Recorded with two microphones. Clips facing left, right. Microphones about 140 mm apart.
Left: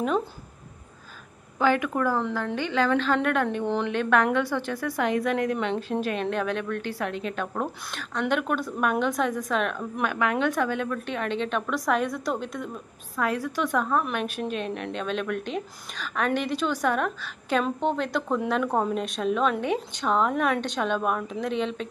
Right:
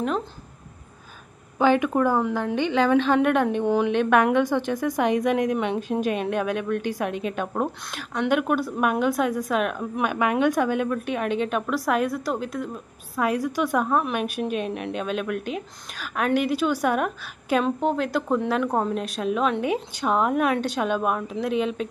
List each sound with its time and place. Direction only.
1.6 s a woman's voice: 20° right (ahead or behind); by 13.2 s 5° right (ahead or behind)
13.2 s a woman's voice: 15° right (ahead or behind)